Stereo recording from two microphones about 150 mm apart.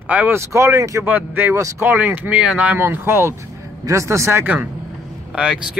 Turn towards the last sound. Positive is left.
turn(degrees=-5)  # may be behind; listen again after turning